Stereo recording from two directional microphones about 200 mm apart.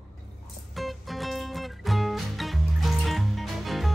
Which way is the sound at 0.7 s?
Centre (ahead or behind).